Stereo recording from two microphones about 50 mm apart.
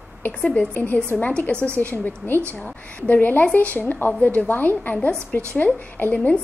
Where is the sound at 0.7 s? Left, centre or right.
Left.